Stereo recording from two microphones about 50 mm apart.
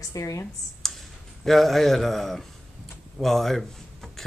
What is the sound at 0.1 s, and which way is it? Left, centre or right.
Speech, left.